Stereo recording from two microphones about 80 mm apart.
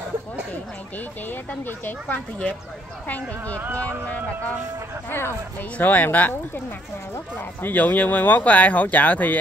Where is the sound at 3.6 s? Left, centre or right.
Right.